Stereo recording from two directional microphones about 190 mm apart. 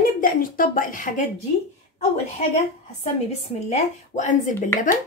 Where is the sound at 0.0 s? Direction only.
45° left (ahead or behind).